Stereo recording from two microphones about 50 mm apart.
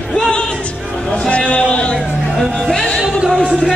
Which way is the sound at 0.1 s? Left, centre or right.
Centre.